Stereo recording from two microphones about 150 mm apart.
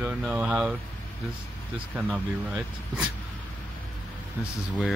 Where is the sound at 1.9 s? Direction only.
10° right (ahead or behind).